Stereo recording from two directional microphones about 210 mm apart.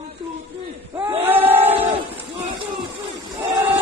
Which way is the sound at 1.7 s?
25° right (ahead or behind).